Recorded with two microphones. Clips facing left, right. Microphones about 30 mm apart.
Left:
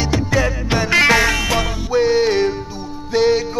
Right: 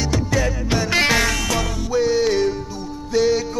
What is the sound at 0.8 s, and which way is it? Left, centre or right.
Music, centre.